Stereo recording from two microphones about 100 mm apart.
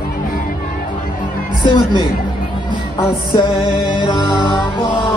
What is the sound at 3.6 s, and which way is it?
Music, 50° left (ahead or behind).